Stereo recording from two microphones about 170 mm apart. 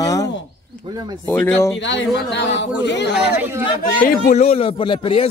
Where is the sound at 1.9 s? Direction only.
90° left.